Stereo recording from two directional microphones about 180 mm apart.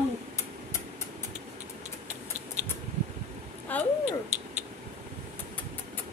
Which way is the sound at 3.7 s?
10° left (ahead or behind).